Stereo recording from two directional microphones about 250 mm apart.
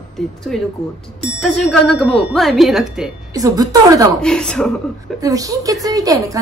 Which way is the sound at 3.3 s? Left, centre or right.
Centre.